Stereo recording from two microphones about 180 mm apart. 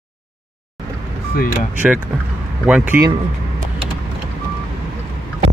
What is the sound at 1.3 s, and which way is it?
Speech, 55° left (ahead or behind).